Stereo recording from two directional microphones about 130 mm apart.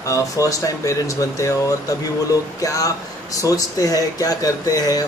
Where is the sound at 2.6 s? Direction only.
25° left (ahead or behind).